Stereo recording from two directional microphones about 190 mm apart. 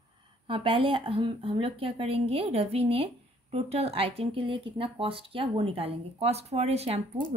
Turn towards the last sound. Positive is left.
turn(degrees=-30)  # may be behind; listen again after turning